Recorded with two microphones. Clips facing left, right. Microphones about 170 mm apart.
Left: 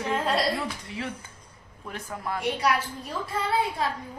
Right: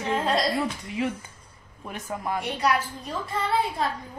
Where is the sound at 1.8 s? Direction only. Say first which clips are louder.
Right 3 dB; 20° right (ahead or behind).